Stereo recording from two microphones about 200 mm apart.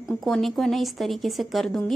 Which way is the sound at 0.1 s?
Centre (ahead or behind).